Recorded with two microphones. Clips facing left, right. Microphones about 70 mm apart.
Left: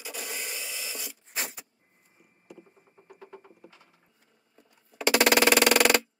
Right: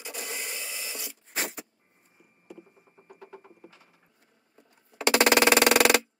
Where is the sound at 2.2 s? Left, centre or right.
Right.